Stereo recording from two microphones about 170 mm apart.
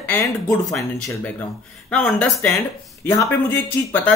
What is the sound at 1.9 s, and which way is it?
Speech, 5° left (ahead or behind).